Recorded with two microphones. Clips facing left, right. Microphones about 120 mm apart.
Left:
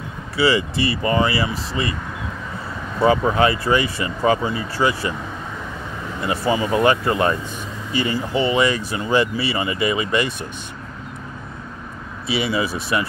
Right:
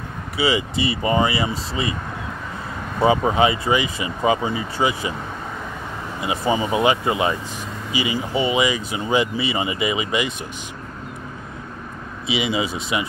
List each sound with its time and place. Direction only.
0.4 s speech: 15° right (ahead or behind)
3.0 s speech: 20° right (ahead or behind)
6.2 s speech: 15° right (ahead or behind)
12.3 s speech: 15° right (ahead or behind)